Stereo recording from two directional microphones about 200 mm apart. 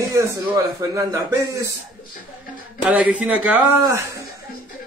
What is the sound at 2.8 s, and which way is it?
Speech, 5° right (ahead or behind).